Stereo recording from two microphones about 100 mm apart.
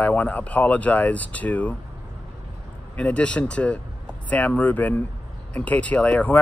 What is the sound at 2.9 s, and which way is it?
Speech, 15° left (ahead or behind).